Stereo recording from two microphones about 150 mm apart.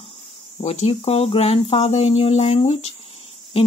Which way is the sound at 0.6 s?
45° left (ahead or behind).